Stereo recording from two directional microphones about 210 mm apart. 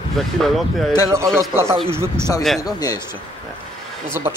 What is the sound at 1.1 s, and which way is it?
Speech, 15° right (ahead or behind).